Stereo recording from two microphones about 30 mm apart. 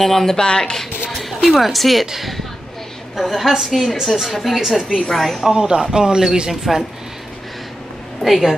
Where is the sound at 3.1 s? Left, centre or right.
Centre.